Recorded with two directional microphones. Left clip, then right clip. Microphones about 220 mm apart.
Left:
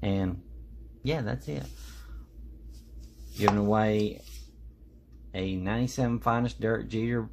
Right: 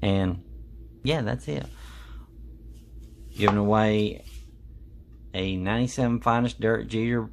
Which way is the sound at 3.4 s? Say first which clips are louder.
Right 3 dB; 15° right (ahead or behind).